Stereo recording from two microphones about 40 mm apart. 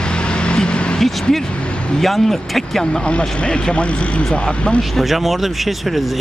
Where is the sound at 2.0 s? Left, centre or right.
Centre.